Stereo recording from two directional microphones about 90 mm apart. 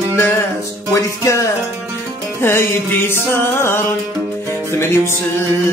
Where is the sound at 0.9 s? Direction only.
35° left (ahead or behind).